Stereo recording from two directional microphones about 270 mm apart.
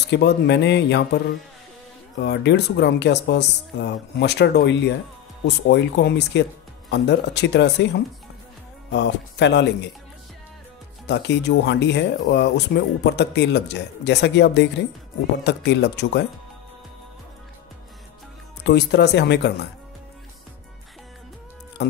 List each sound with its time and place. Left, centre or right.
0.0 s speech: left
11.1 s speech: left
18.6 s speech: left